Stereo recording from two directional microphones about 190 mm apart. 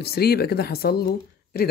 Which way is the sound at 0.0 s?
55° left (ahead or behind).